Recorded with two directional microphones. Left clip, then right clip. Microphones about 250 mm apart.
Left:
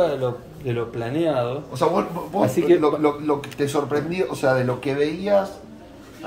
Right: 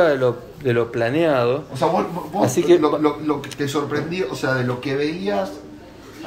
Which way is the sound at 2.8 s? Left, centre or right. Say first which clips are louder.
Right 1 dB; left.